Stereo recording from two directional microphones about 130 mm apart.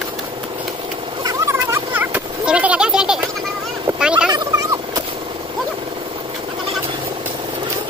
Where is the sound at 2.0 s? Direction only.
10° right (ahead or behind).